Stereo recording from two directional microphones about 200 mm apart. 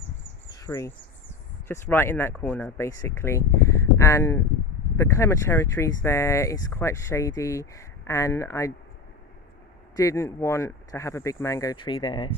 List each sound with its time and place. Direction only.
0.6 s speech: 15° left (ahead or behind)
9.9 s speech: 15° left (ahead or behind)